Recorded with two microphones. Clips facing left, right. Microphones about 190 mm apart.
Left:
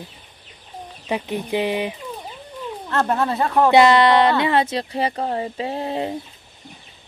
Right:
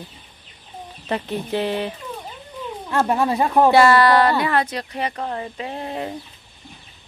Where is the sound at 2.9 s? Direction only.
10° right (ahead or behind).